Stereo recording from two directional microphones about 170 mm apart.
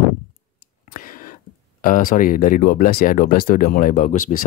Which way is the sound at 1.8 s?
55° left (ahead or behind).